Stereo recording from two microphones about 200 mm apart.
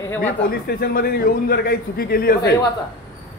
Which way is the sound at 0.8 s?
50° left (ahead or behind).